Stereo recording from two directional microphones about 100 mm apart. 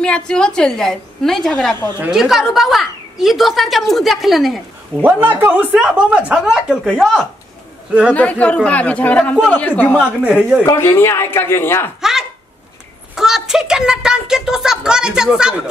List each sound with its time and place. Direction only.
0.0 s speech: 10° left (ahead or behind)
5.0 s speech: 20° right (ahead or behind)
5.8 s speech: centre (ahead or behind)
6.0 s speech: 10° right (ahead or behind)
8.1 s speech: 15° left (ahead or behind)
9.9 s speech: 10° right (ahead or behind)
10.6 s a man's voice: 25° left (ahead or behind)
12.0 s a sound: 5° right (ahead or behind)
13.1 s a woman's voice: 5° right (ahead or behind)